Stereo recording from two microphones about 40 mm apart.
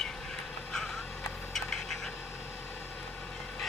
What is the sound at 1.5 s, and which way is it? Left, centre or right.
Duck, centre.